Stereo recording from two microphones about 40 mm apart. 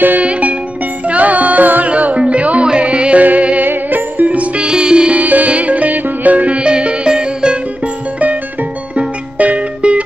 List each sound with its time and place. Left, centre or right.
0.2 s music: right
1.9 s music: right
3.3 s music: right
3.6 s music: right
4.3 s music: right
4.6 s music: right
5.2 s music: right
8.9 s music: right